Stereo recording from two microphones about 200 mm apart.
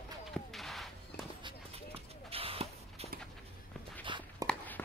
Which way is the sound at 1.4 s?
30° right (ahead or behind).